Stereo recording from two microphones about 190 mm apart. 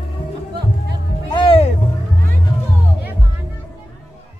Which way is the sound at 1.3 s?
25° left (ahead or behind).